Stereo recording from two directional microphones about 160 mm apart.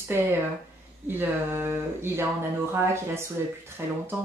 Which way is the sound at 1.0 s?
15° right (ahead or behind).